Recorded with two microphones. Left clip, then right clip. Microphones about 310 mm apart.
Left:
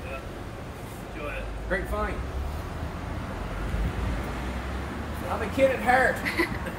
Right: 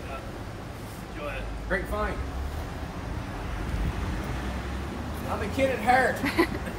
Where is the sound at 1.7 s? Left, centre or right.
Centre.